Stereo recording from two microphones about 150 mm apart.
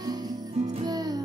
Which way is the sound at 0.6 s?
45° right (ahead or behind).